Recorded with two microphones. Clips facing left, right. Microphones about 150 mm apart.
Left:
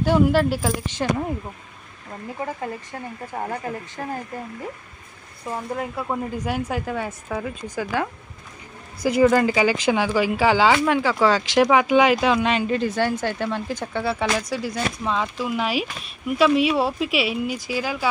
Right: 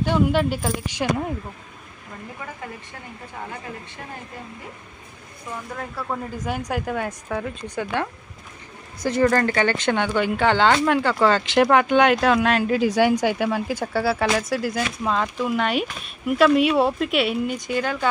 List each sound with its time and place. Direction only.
0.0 s speech: 5° left (ahead or behind)
2.4 s speech: 40° left (ahead or behind)
5.8 s speech: 15° left (ahead or behind)